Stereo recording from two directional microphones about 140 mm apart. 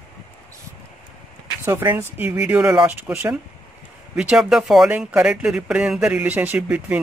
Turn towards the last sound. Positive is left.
turn(degrees=-10)  # may be behind; listen again after turning